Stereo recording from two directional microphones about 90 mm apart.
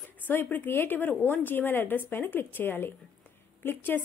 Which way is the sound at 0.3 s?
20° left (ahead or behind).